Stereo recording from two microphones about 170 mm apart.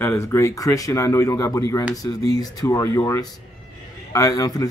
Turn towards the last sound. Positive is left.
turn(degrees=20)  # may be behind; listen again after turning